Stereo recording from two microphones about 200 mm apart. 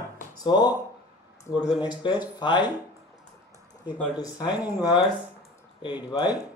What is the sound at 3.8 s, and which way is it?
Speech, 20° left (ahead or behind).